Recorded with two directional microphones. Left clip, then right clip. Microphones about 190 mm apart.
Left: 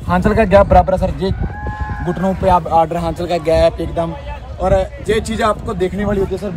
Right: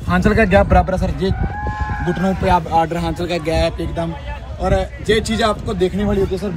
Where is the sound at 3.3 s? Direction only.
50° left (ahead or behind).